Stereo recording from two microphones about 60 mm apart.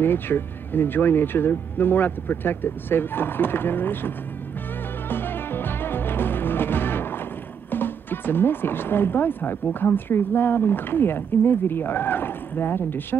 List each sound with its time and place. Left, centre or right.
0.0 s speech: left
5.1 s music: left
7.7 s speech: left